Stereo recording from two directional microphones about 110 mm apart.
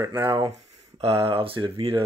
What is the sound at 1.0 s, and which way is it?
Speech, 60° right (ahead or behind).